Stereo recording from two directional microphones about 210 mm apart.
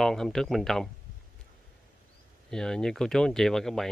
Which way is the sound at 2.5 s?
5° left (ahead or behind).